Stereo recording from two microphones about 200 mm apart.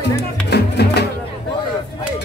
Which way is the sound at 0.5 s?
55° left (ahead or behind).